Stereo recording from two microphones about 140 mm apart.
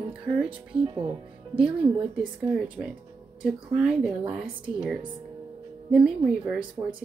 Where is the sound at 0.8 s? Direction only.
35° right (ahead or behind).